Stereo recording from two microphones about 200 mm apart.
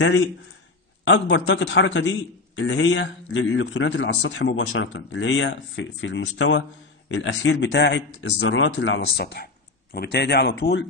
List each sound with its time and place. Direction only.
1.0 s speech: 65° left (ahead or behind)
9.1 s speech: 50° left (ahead or behind)